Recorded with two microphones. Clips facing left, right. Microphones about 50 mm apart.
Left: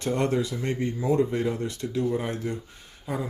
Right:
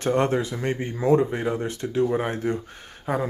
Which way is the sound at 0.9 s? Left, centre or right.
Right.